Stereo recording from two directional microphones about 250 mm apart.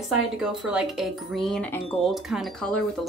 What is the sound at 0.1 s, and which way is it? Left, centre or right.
Speech, centre.